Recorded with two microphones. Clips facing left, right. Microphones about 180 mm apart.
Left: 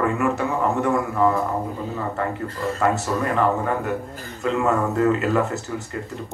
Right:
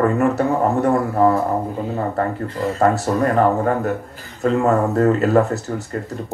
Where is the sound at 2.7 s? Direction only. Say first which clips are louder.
Right 5 dB; 40° right (ahead or behind).